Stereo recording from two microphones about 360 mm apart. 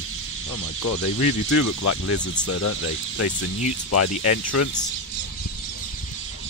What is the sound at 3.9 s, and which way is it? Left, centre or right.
Speech, left.